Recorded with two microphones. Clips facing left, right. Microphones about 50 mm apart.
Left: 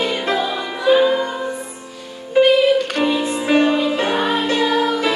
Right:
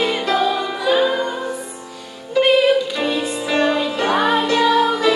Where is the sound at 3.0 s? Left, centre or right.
Left.